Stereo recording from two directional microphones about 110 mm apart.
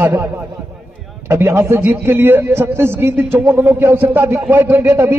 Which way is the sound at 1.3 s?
25° right (ahead or behind).